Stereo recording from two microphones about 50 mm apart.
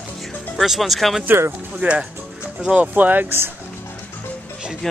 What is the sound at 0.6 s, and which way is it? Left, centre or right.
Speech, centre.